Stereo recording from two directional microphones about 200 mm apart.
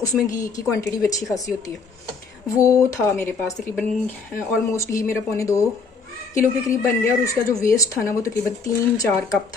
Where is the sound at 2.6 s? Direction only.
15° left (ahead or behind).